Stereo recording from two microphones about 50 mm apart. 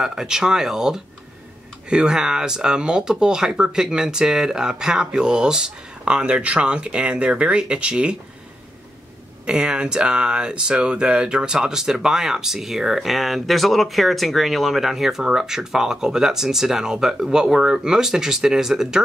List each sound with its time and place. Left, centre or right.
0.0 s speech: centre
9.5 s speech: centre